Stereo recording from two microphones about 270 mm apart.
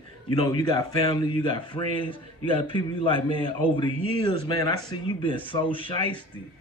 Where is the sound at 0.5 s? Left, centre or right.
Centre.